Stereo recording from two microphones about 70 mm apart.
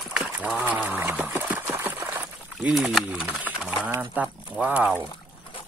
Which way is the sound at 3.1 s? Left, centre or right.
Right.